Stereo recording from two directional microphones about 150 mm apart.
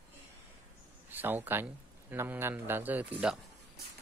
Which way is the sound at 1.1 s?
15° right (ahead or behind).